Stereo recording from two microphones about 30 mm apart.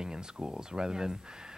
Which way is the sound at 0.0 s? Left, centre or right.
Right.